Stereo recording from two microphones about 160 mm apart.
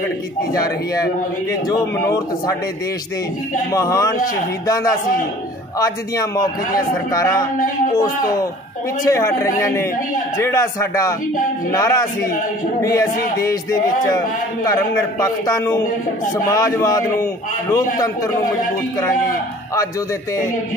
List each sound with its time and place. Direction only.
1.7 s a man's voice: 20° left (ahead or behind)
3.7 s a man's voice: 20° left (ahead or behind)